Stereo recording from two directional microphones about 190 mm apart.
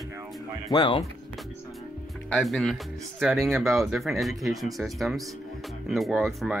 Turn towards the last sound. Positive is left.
turn(degrees=0)  # may be behind; listen again after turning